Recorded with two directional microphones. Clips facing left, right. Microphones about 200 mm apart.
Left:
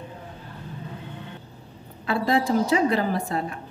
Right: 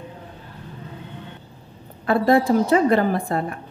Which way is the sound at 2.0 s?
55° right (ahead or behind).